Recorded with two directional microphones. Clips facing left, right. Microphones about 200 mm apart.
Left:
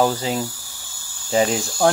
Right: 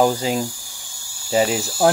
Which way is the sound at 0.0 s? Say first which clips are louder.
Right 2 dB; 15° right (ahead or behind).